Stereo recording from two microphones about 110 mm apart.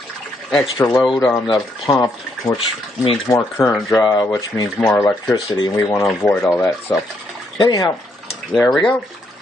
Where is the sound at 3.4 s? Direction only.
20° left (ahead or behind).